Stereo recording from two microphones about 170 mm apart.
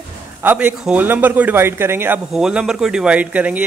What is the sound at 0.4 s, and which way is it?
A man's voice, 10° right (ahead or behind).